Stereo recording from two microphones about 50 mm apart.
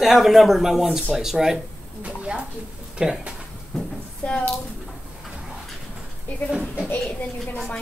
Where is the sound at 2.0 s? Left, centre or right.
Right.